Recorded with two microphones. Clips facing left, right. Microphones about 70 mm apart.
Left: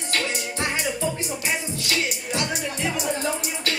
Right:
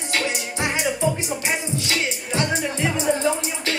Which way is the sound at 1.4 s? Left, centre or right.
Right.